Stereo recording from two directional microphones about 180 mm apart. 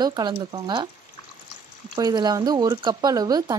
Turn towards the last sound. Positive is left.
turn(degrees=-20)  # may be behind; listen again after turning